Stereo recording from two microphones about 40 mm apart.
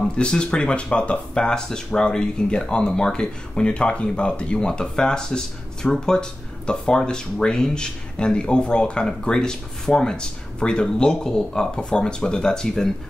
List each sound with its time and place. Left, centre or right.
0.2 s speech: left